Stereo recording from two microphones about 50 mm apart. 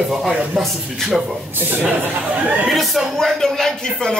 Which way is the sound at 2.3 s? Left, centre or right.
Right.